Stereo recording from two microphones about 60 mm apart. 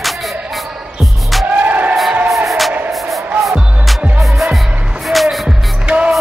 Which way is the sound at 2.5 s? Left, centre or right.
Centre.